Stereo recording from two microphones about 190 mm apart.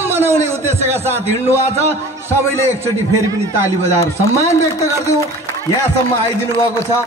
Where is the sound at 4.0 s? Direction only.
15° left (ahead or behind).